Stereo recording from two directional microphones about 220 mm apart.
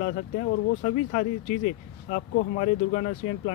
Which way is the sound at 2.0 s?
40° left (ahead or behind).